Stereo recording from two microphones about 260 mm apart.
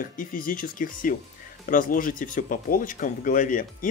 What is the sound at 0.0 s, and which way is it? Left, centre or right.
Speech, left.